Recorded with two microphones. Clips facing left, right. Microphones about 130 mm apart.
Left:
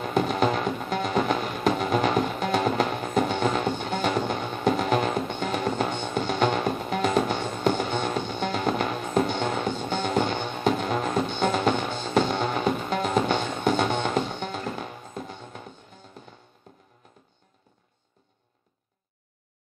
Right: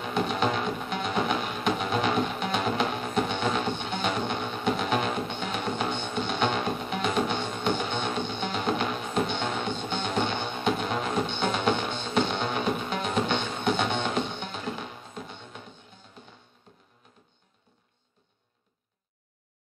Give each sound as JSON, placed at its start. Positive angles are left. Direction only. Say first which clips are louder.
{"t": 0.0, "sound": "music", "louder": "left 3 dB", "side_deg": 40}